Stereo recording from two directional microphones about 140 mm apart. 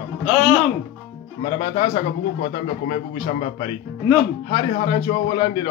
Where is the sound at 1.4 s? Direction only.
35° left (ahead or behind).